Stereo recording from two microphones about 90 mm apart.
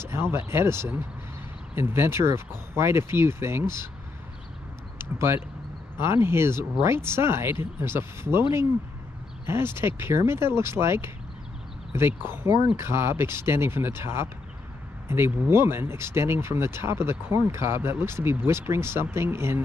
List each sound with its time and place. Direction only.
0.0 s speech: 30° right (ahead or behind)
4.9 s speech: 25° right (ahead or behind)